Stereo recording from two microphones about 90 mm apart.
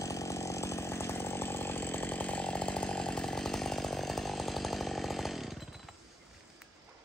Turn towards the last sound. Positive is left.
turn(degrees=0)  # may be behind; listen again after turning